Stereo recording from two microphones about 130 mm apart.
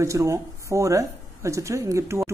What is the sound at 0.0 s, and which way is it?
Speech, 25° right (ahead or behind).